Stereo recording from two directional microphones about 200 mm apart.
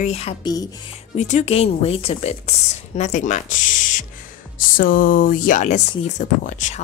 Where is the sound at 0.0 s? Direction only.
30° left (ahead or behind).